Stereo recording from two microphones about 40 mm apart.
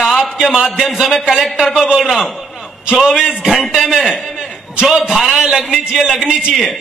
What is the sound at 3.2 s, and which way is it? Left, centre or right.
A man's voice, centre.